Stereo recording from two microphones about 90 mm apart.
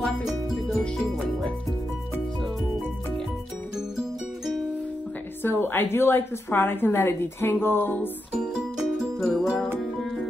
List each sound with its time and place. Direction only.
5.4 s a woman's voice: 25° left (ahead or behind)
8.4 s music: 5° right (ahead or behind)